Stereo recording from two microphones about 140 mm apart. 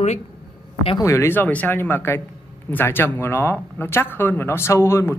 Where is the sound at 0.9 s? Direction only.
20° left (ahead or behind).